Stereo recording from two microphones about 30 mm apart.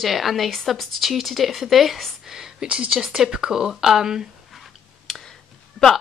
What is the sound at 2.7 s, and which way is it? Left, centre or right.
Speech, right.